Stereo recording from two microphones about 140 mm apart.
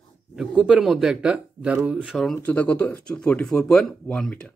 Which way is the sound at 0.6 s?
5° right (ahead or behind).